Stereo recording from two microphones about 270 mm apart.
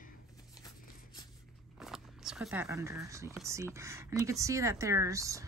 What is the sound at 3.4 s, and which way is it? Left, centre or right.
Speech, centre.